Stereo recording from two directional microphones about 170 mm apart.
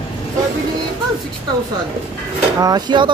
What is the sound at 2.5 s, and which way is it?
Speech, 25° right (ahead or behind).